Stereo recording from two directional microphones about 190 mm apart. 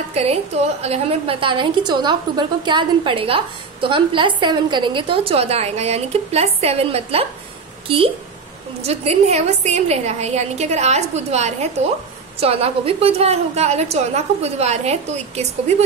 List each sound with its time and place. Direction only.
0.1 s a woman's voice: 35° right (ahead or behind)
8.8 s a woman's voice: 35° right (ahead or behind)